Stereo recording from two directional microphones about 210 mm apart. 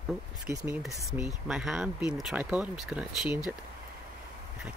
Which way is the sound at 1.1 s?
5° right (ahead or behind).